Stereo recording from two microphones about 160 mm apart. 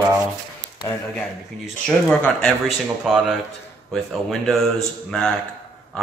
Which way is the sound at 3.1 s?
5° right (ahead or behind).